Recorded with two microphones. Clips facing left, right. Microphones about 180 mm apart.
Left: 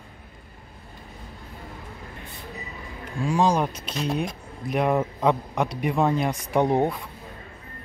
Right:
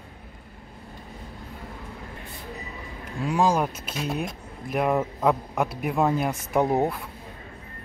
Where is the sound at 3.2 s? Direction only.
5° right (ahead or behind).